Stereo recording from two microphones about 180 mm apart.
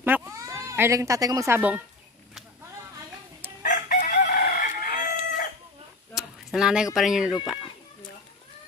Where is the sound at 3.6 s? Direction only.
45° left (ahead or behind).